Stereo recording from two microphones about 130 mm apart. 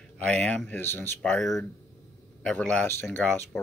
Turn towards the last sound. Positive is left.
turn(degrees=5)  # may be behind; listen again after turning